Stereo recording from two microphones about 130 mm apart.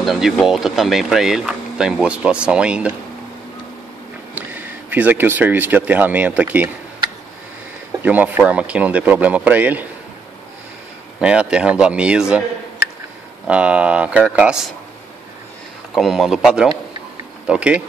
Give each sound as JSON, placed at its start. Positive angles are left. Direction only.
{"t": 0.0, "sound": "speech", "side_deg": 0}
{"t": 4.4, "sound": "speech", "side_deg": -10}
{"t": 8.0, "sound": "speech", "side_deg": -10}
{"t": 11.1, "sound": "speech", "side_deg": -10}
{"t": 13.5, "sound": "speech", "side_deg": -10}
{"t": 15.9, "sound": "speech", "side_deg": 0}